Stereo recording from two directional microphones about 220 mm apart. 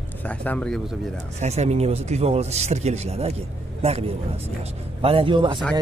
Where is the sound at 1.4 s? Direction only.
30° right (ahead or behind).